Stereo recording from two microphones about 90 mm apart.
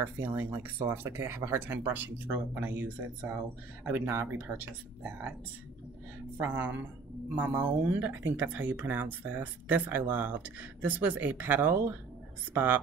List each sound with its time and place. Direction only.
0.0 s speech: 25° right (ahead or behind)
6.3 s speech: 20° right (ahead or behind)